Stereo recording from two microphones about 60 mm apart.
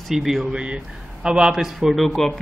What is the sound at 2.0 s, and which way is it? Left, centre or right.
Speech, centre.